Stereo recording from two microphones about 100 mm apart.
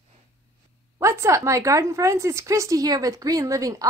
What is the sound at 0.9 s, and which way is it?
A woman's voice, 30° right (ahead or behind).